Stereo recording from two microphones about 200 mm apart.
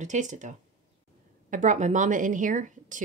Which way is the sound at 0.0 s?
35° right (ahead or behind).